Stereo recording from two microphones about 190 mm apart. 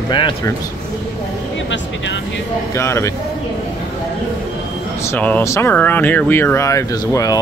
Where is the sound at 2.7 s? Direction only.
15° left (ahead or behind).